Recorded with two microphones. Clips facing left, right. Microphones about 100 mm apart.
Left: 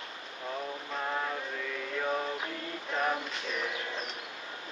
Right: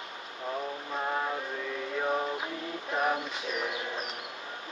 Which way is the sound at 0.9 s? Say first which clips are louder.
Right 2 dB; 15° right (ahead or behind).